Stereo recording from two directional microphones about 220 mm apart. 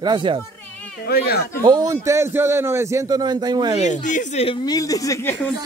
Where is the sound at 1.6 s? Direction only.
20° right (ahead or behind).